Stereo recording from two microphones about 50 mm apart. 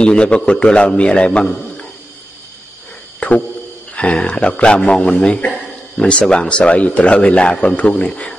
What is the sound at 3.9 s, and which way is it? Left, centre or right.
A man's voice, left.